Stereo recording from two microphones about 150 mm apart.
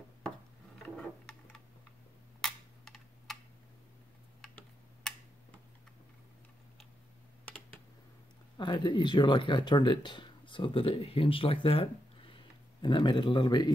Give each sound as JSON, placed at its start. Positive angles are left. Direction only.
{"t": 0.8, "sound": "a sound", "side_deg": 10}
{"t": 2.4, "sound": "computer keyboard", "side_deg": 5}
{"t": 8.5, "sound": "speech", "side_deg": 30}